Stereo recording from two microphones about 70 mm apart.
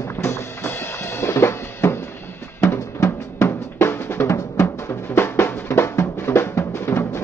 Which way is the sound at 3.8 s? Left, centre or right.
Left.